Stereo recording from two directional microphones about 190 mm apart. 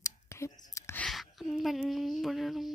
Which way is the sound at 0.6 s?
15° left (ahead or behind).